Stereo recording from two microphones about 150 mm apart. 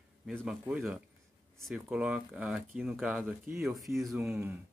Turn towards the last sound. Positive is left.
turn(degrees=0)  # may be behind; listen again after turning